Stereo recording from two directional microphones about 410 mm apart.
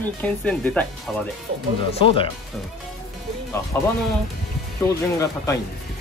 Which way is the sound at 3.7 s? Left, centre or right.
Centre.